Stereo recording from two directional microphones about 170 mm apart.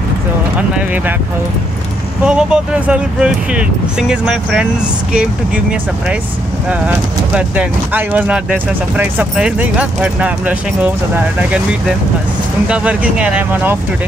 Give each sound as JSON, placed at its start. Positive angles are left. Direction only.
{"t": 0.6, "sound": "speech", "side_deg": -10}
{"t": 2.2, "sound": "speech", "side_deg": -5}
{"t": 7.3, "sound": "speech", "side_deg": -10}
{"t": 12.6, "sound": "speech", "side_deg": -5}